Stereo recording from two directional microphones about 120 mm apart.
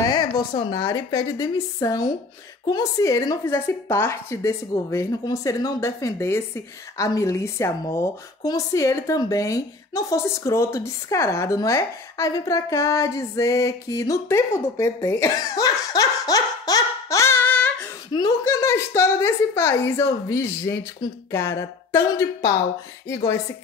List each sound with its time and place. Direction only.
0.1 s a woman's voice: 35° left (ahead or behind); by 17.8 s 15° left (ahead or behind)
18.4 s a woman's voice: 25° left (ahead or behind)